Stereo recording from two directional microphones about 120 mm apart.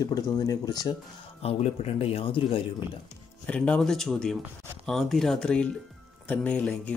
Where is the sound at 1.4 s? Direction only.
60° left (ahead or behind).